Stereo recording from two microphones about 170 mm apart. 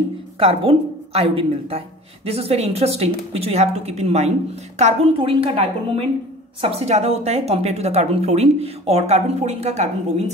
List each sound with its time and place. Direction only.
0.4 s speech: 35° right (ahead or behind)